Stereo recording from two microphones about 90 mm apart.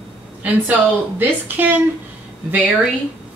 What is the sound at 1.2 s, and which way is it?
Speech, 20° right (ahead or behind).